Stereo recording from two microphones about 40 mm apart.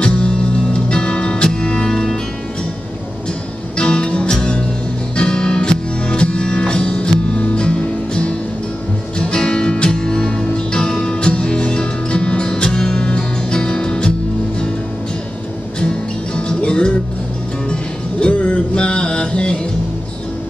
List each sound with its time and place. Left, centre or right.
0.8 s music: left
1.9 s music: centre
3.7 s music: left
16.3 s music: left
18.2 s music: left